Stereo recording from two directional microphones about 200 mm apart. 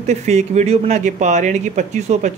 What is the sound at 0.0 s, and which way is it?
Speech, 35° right (ahead or behind).